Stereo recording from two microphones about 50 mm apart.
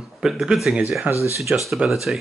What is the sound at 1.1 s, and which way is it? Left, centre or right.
Speech, right.